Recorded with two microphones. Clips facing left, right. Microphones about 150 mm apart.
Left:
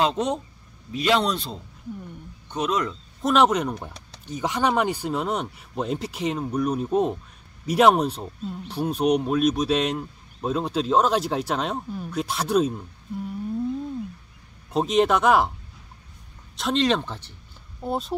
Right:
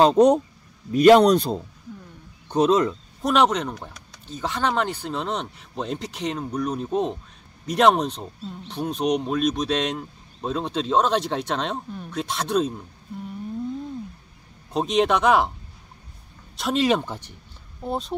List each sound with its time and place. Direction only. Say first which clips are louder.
0.0 s a man's voice: right 8 dB; 40° right (ahead or behind)
2.4 s speech: right 7 dB; 35° right (ahead or behind)
3.2 s speech: left 1 dB; centre (ahead or behind)
14.7 s speech: left 1 dB; centre (ahead or behind)
16.5 s speech: right 1 dB; 5° right (ahead or behind)
17.8 s speech: left 1 dB; centre (ahead or behind)